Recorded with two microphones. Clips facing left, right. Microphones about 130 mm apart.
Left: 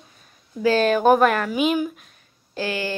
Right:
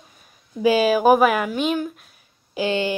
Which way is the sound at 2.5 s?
20° right (ahead or behind).